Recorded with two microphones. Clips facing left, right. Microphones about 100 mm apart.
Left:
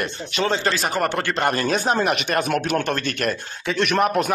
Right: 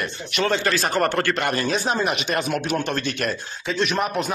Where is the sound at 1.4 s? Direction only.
45° left (ahead or behind).